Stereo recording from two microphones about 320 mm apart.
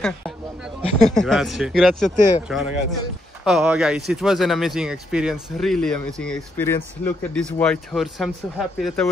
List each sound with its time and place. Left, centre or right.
0.9 s speech: centre